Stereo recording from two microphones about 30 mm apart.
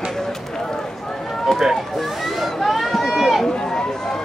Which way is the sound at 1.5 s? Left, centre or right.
Left.